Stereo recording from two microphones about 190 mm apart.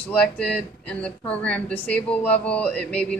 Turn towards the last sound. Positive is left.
turn(degrees=5)  # may be behind; listen again after turning